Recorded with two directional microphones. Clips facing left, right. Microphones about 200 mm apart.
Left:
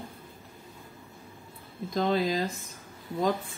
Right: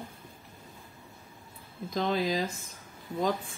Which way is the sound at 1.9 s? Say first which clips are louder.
Left 2 dB; centre (ahead or behind).